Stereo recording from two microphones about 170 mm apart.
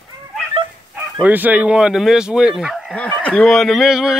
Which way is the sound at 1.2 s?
10° right (ahead or behind).